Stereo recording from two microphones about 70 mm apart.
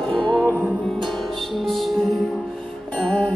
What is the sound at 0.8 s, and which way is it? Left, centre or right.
Music, centre.